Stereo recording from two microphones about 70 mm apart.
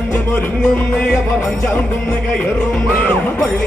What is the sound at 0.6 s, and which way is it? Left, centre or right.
Music, centre.